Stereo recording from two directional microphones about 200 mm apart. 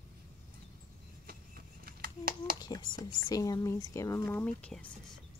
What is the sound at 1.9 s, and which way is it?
Hands, 45° right (ahead or behind).